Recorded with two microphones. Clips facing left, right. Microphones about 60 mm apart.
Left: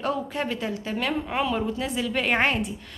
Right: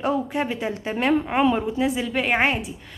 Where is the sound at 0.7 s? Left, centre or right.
Right.